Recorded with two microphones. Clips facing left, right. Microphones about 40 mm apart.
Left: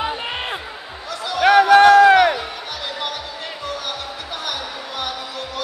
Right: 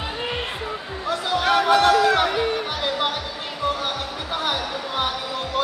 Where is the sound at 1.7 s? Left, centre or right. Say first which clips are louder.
Left 7 dB; left.